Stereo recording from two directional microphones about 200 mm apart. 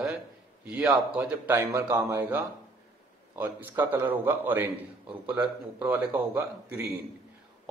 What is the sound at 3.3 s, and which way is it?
A man's voice, 10° right (ahead or behind).